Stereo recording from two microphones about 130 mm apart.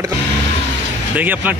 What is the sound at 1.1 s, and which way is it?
Speech, 15° right (ahead or behind).